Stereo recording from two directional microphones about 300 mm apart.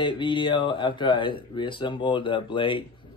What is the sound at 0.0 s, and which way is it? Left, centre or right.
Speech, centre.